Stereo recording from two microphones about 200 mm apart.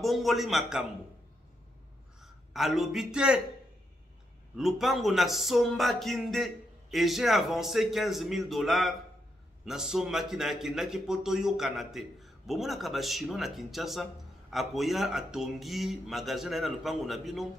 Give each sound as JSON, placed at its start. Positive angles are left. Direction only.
{"t": 0.0, "sound": "speech", "side_deg": 0}
{"t": 2.2, "sound": "a man's voice", "side_deg": 0}
{"t": 4.6, "sound": "speech", "side_deg": 0}